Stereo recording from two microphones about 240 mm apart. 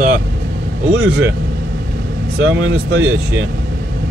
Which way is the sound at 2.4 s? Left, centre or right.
Right.